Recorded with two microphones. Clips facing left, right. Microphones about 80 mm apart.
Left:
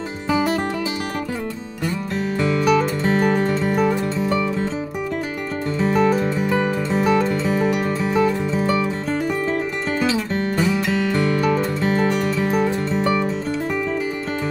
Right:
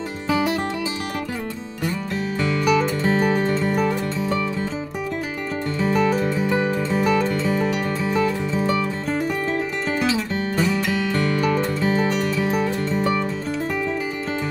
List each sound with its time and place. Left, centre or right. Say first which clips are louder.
0.3 s music: left 1 dB; centre
2.4 s music: left 2 dB; centre
5.8 s music: left 2 dB; centre